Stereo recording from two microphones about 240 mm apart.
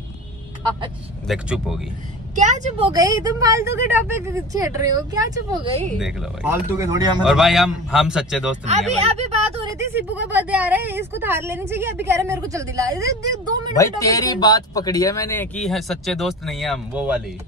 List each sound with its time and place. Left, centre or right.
1.2 s a man's voice: centre
2.3 s a woman's voice: right
2.9 s speech: centre
5.9 s a man's voice: centre
6.8 s speech: centre
7.2 s a man's voice: centre
8.6 s speech: right
9.8 s speech: centre
13.7 s speech: centre